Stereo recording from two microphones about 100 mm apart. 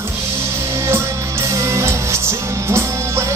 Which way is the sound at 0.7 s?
30° right (ahead or behind).